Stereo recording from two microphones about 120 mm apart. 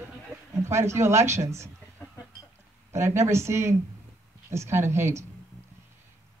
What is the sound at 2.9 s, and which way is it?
Speech, 20° right (ahead or behind).